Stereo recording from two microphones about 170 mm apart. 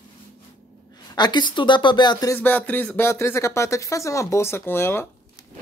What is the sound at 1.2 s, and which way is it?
A woman's voice, 25° left (ahead or behind).